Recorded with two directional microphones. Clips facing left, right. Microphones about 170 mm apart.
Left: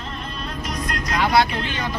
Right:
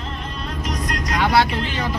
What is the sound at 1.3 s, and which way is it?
Speech, 35° right (ahead or behind).